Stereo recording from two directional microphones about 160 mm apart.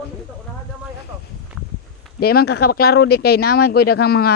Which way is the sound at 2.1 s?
75° left (ahead or behind).